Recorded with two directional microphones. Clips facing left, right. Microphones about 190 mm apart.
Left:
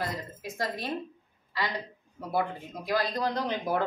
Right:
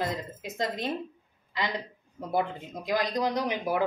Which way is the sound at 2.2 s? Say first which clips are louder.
Right 1 dB; 20° right (ahead or behind).